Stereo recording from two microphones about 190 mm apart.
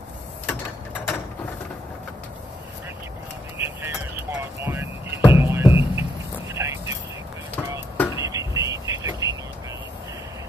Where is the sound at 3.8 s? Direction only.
10° right (ahead or behind).